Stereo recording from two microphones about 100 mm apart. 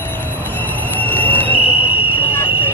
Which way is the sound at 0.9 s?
15° left (ahead or behind).